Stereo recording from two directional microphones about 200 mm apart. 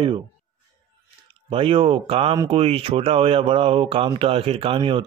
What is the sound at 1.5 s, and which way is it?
Speech, 25° right (ahead or behind).